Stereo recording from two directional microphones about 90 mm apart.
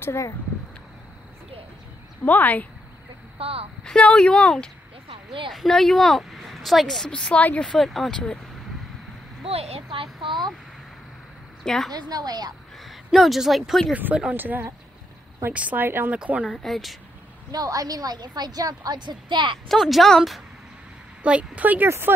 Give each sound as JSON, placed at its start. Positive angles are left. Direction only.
{"t": 0.0, "sound": "speech", "side_deg": 30}
{"t": 2.2, "sound": "speech", "side_deg": 20}
{"t": 3.3, "sound": "a woman's voice", "side_deg": -90}
{"t": 3.8, "sound": "speech", "side_deg": 10}
{"t": 9.4, "sound": "a child's voice", "side_deg": -90}
{"t": 10.2, "sound": "speech", "side_deg": -60}
{"t": 11.6, "sound": "a woman's voice", "side_deg": 5}
{"t": 11.9, "sound": "a woman's voice", "side_deg": -45}
{"t": 12.8, "sound": "speech", "side_deg": 0}
{"t": 13.9, "sound": "speech", "side_deg": -15}
{"t": 16.4, "sound": "speech", "side_deg": 0}
{"t": 17.5, "sound": "a woman's voice", "side_deg": -45}
{"t": 19.7, "sound": "speech", "side_deg": 0}
{"t": 21.2, "sound": "speech", "side_deg": -15}